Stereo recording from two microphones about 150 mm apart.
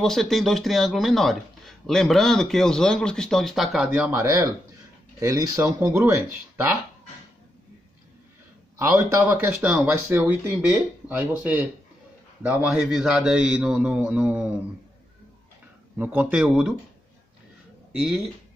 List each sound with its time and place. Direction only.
0.0 s speech: centre (ahead or behind)
4.1 s speech: 20° right (ahead or behind)
8.7 s speech: 20° right (ahead or behind)
9.5 s a man's voice: 5° right (ahead or behind)
16.0 s a man's voice: 10° right (ahead or behind)
17.9 s speech: centre (ahead or behind)